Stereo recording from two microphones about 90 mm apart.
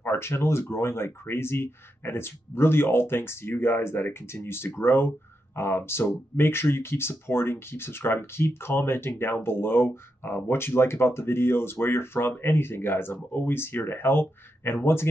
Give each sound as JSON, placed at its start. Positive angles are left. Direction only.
{"t": 0.0, "sound": "speech", "side_deg": 25}